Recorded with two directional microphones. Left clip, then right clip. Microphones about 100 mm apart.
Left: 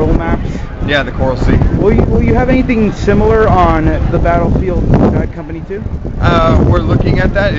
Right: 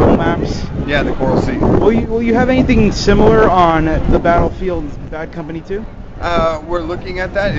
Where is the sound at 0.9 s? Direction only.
Centre (ahead or behind).